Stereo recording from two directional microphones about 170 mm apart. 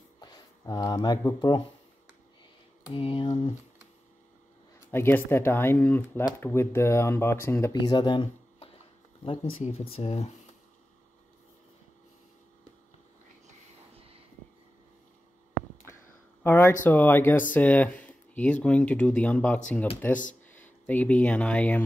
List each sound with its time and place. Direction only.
0.2 s speech: 25° left (ahead or behind)
2.9 s speech: 30° left (ahead or behind)
4.9 s speech: 15° left (ahead or behind)
7.9 s speech: 25° left (ahead or behind)
16.4 s speech: 10° left (ahead or behind)